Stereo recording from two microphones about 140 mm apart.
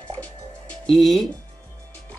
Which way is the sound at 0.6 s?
Centre (ahead or behind).